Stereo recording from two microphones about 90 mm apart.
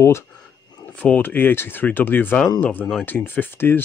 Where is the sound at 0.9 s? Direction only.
15° left (ahead or behind).